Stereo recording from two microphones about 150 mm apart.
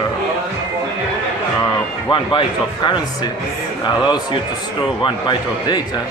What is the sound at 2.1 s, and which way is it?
A man's voice, 35° left (ahead or behind).